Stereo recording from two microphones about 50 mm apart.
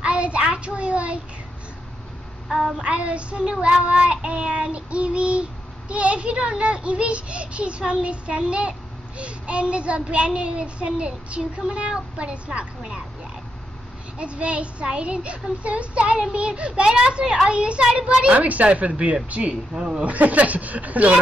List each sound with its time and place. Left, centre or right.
0.0 s child singing: right
2.5 s child singing: centre
14.1 s child singing: right
19.7 s a man's voice: centre
20.1 s child singing: right